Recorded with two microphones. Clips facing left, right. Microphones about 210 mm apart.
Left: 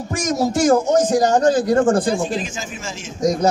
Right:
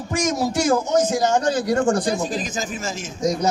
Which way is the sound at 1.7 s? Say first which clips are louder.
Left 4 dB; 50° left (ahead or behind).